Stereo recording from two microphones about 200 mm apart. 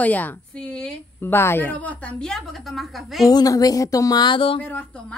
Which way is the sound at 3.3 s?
20° left (ahead or behind).